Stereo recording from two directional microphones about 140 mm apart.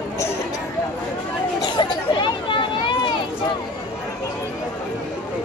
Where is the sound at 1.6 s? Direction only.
35° left (ahead or behind).